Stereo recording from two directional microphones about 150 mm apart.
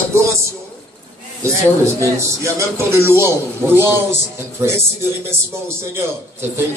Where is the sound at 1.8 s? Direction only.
20° right (ahead or behind).